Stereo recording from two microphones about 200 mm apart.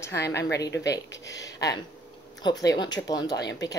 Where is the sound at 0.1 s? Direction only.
55° left (ahead or behind).